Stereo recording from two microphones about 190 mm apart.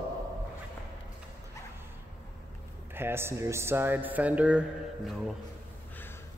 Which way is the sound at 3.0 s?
10° right (ahead or behind).